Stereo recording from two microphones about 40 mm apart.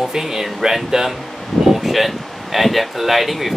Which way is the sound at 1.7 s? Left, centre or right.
Centre.